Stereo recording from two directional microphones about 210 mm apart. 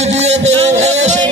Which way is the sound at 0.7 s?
30° right (ahead or behind).